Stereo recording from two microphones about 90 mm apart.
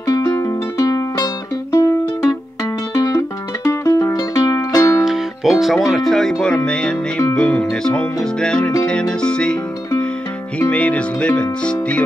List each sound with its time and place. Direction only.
0.0 s music: 40° left (ahead or behind)
2.9 s music: 40° left (ahead or behind)
5.0 s music: 5° right (ahead or behind)
5.6 s speech: centre (ahead or behind)
6.4 s music: 10° left (ahead or behind)
10.6 s music: 15° left (ahead or behind)